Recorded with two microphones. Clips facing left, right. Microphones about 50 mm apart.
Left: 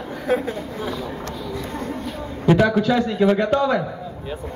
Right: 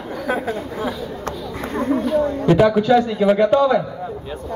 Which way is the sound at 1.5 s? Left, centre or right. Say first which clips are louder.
Right 10 dB; right.